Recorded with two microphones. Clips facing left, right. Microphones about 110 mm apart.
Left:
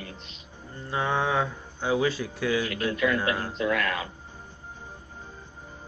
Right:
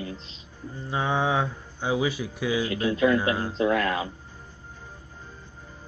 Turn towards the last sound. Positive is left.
turn(degrees=-25)  # may be behind; listen again after turning